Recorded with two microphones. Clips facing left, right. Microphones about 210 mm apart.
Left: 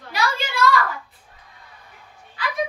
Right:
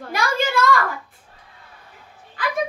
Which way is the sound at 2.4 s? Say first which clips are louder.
Right 3 dB; 50° right (ahead or behind).